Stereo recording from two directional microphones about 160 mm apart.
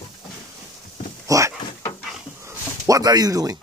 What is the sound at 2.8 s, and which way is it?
Speech, 20° right (ahead or behind).